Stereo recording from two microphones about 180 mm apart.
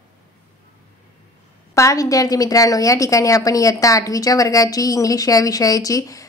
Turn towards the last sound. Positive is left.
turn(degrees=20)  # may be behind; listen again after turning